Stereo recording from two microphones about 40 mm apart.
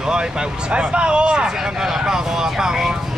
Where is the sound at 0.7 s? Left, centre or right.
Right.